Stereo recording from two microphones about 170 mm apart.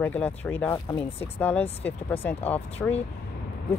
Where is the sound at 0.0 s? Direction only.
10° left (ahead or behind).